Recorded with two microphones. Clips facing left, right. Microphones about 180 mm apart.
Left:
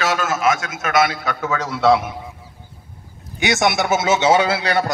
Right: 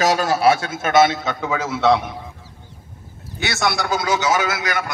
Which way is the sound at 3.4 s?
20° left (ahead or behind).